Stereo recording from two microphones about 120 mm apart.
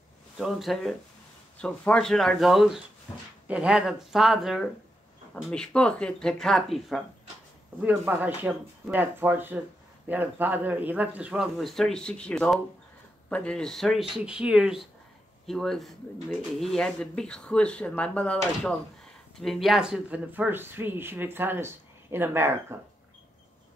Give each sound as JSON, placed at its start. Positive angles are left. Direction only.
{"t": 0.4, "sound": "speech", "side_deg": 0}
{"t": 7.8, "sound": "speech", "side_deg": -10}
{"t": 11.5, "sound": "speech", "side_deg": 0}